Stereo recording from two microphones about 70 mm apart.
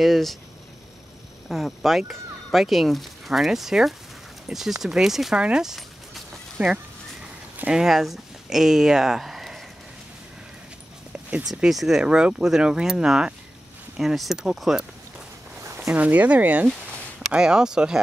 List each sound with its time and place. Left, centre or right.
0.0 s speech: centre
1.5 s speech: centre
5.4 s a sound: centre
7.5 s speech: centre
11.4 s speech: centre
15.6 s a sound: right
15.9 s speech: right